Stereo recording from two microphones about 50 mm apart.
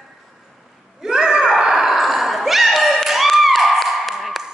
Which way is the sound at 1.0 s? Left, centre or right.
Centre.